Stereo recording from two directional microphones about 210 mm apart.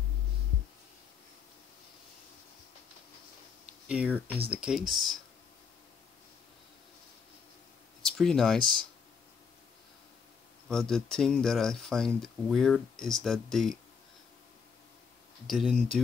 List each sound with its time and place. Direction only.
3.8 s speech: 5° right (ahead or behind)
8.0 s speech: 5° left (ahead or behind)
10.7 s speech: 5° left (ahead or behind)
15.4 s speech: centre (ahead or behind)